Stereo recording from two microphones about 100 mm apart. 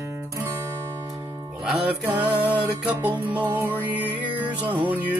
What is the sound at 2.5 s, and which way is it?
Music, 15° right (ahead or behind).